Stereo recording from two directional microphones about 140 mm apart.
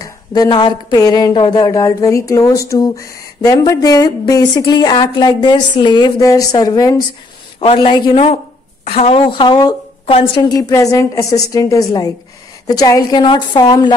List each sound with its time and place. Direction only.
0.0 s a woman's voice: 30° left (ahead or behind)
10.0 s a woman's voice: 40° left (ahead or behind)
10.5 s speech: 25° left (ahead or behind)